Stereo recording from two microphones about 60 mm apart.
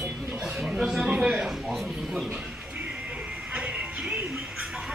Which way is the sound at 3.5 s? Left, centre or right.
Centre.